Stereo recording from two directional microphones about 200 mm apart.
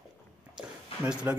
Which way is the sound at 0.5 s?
5° right (ahead or behind).